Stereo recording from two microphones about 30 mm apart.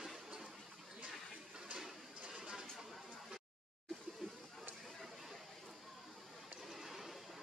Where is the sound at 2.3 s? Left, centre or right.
Centre.